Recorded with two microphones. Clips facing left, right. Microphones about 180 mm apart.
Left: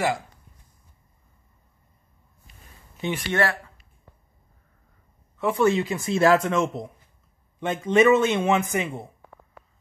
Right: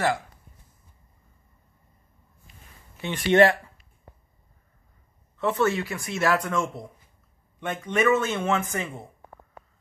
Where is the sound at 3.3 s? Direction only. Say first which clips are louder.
Right 8 dB; 20° right (ahead or behind).